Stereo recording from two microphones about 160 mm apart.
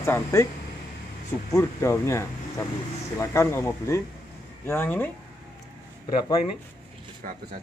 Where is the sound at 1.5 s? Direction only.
15° left (ahead or behind).